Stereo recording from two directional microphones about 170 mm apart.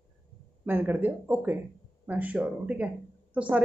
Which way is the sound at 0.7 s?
10° right (ahead or behind).